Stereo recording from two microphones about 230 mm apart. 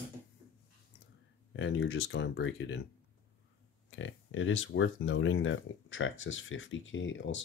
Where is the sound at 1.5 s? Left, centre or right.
Left.